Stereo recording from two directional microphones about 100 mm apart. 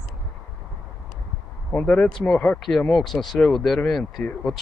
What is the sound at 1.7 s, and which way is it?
Speech, 15° left (ahead or behind).